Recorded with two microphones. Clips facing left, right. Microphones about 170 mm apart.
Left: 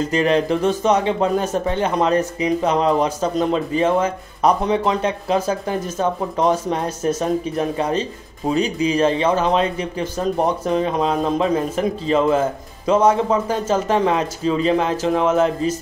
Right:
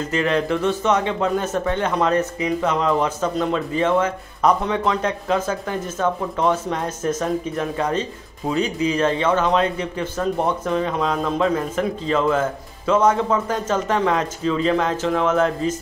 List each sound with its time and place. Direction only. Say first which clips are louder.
0.1 s speech: left 1 dB; 30° left (ahead or behind)
10.7 s speech: left 2 dB; 20° left (ahead or behind)
12.9 s speech: left 2 dB; 30° left (ahead or behind)